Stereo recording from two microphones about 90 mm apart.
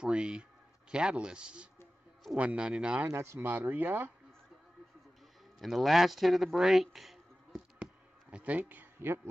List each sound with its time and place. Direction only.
0.0 s a man's voice: 10° right (ahead or behind)
3.1 s speech: 30° right (ahead or behind)
5.6 s speech: centre (ahead or behind)
7.8 s a sound: 15° right (ahead or behind)